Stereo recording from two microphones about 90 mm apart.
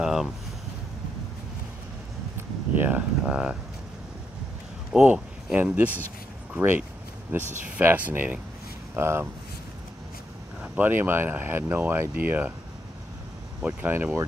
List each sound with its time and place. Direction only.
0.0 s a sound: 5° right (ahead or behind)
2.7 s speech: 20° right (ahead or behind)
4.9 s speech: 10° right (ahead or behind); by 9.3 s 25° right (ahead or behind)
10.6 s speech: 20° right (ahead or behind)
13.6 s speech: 15° right (ahead or behind)